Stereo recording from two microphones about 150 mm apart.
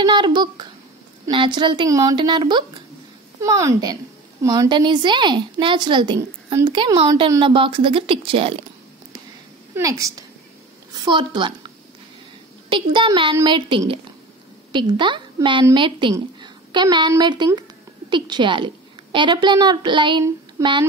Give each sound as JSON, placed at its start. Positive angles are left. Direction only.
{"t": 0.0, "sound": "a woman's voice", "side_deg": -30}
{"t": 3.3, "sound": "a woman's voice", "side_deg": -20}
{"t": 9.8, "sound": "a woman's voice", "side_deg": -20}
{"t": 20.6, "sound": "speech", "side_deg": -20}